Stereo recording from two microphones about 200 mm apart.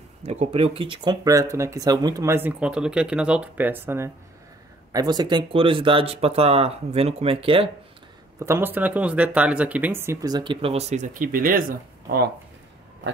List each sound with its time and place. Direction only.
0.2 s speech: 30° right (ahead or behind)
8.4 s speech: 10° right (ahead or behind); by 11.6 s 45° right (ahead or behind)